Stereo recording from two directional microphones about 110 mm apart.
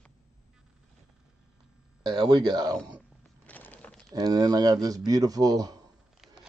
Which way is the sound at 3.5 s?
15° left (ahead or behind).